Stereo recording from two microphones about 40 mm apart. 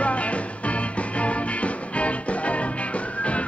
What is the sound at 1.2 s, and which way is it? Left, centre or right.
Music, left.